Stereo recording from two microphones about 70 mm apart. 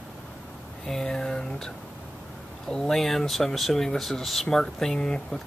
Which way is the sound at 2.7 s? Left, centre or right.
Centre.